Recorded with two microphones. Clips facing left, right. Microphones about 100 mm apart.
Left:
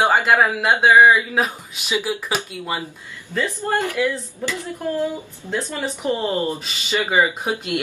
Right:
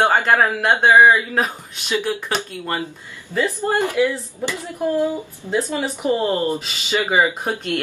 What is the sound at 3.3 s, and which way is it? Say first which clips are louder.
Speech: right 2 dB; 15° right (ahead or behind).